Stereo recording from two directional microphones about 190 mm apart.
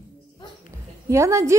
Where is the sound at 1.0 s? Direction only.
15° right (ahead or behind).